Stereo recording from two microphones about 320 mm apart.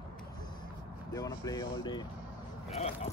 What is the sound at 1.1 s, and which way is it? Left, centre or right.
Speech, centre.